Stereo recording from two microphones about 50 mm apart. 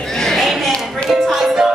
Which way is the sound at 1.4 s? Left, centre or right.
Centre.